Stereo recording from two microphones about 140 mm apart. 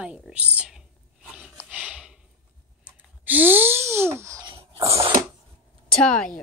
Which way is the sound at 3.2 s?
15° right (ahead or behind).